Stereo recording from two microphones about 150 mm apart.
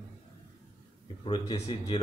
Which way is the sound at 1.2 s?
30° left (ahead or behind).